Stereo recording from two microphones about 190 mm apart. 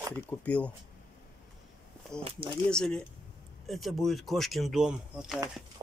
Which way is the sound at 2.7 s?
5° left (ahead or behind).